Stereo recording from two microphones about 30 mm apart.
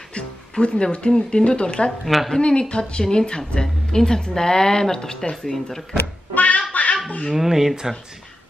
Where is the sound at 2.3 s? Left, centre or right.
Left.